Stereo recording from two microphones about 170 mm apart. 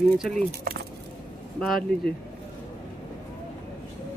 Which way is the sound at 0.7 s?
60° right (ahead or behind).